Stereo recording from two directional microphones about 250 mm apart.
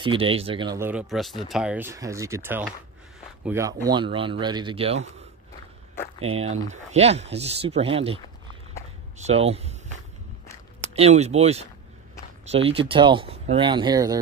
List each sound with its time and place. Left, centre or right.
0.0 s speech: right
6.2 s speech: right
9.2 s speech: right
11.0 s speech: right